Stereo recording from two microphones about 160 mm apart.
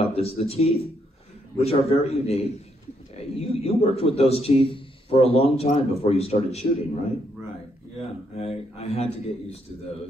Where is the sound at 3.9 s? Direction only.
40° left (ahead or behind).